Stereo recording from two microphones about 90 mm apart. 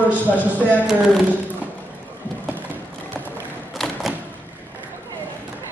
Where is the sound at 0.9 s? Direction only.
5° right (ahead or behind).